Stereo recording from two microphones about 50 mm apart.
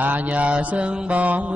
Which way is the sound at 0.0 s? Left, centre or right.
Right.